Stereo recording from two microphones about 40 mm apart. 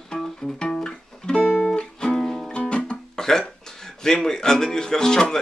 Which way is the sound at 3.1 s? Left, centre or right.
Centre.